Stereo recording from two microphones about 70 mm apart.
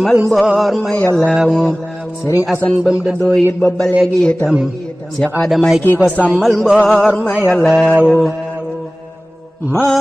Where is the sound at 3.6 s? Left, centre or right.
Centre.